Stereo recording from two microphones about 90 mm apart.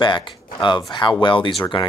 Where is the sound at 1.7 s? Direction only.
75° left (ahead or behind).